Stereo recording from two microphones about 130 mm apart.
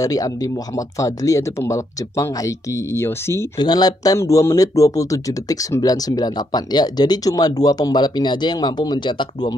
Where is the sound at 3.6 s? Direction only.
30° left (ahead or behind).